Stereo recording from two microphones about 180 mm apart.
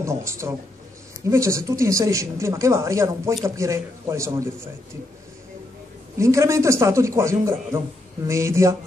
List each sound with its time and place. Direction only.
0.0 s a woman's voice: 15° right (ahead or behind)
6.1 s a woman's voice: 15° right (ahead or behind)